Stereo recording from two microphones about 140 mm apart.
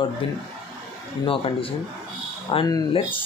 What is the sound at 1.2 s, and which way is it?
Speech, 40° left (ahead or behind).